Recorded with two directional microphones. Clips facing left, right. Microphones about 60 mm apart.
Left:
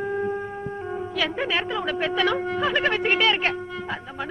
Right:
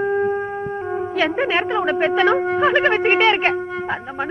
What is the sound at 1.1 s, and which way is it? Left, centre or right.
A woman's voice, right.